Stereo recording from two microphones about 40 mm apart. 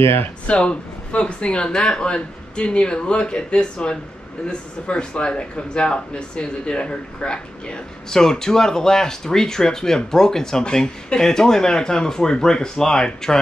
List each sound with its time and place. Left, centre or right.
0.0 s speech: left
0.5 s speech: left